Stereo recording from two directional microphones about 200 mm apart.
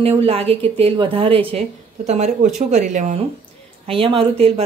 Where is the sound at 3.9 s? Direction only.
25° right (ahead or behind).